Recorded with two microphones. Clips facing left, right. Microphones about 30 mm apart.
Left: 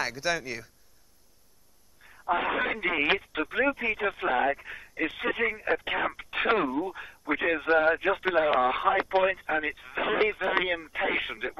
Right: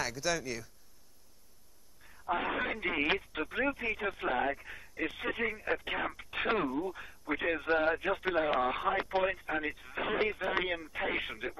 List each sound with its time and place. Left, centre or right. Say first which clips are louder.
0.0 s speech: left 4 dB; left
2.0 s speech: left 6 dB; left